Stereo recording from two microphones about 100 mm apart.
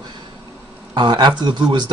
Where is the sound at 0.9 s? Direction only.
50° right (ahead or behind).